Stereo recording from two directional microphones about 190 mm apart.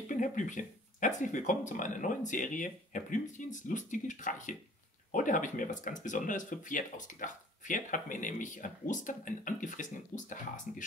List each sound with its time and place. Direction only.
0.1 s speech: 40° left (ahead or behind)